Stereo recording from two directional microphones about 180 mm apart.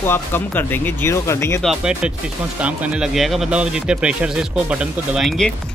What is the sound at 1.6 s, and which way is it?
Speech, centre (ahead or behind).